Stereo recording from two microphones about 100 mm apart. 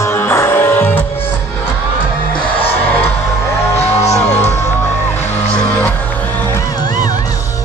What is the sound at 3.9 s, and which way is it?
Music, 30° left (ahead or behind).